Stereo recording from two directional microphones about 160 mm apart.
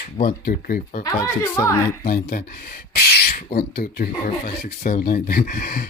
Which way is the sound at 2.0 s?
65° left (ahead or behind).